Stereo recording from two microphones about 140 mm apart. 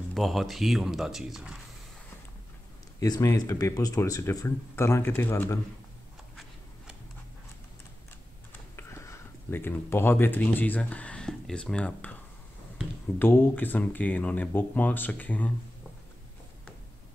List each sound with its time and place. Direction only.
0.1 s speech: centre (ahead or behind)
3.0 s speech: 25° left (ahead or behind)
8.7 s speech: 20° left (ahead or behind)
13.2 s speech: 15° left (ahead or behind)